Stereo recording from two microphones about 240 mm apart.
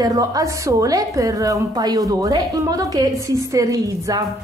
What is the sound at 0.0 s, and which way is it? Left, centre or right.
A woman's voice, centre.